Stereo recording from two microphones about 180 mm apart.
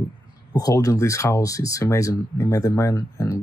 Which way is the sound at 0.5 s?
20° left (ahead or behind).